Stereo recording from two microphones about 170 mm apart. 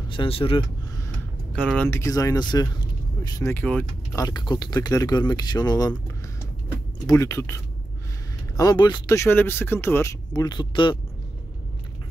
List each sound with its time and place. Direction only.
0.1 s speech: 30° left (ahead or behind)
1.5 s speech: 5° left (ahead or behind)
4.2 s speech: 25° left (ahead or behind)
7.0 s speech: 20° left (ahead or behind)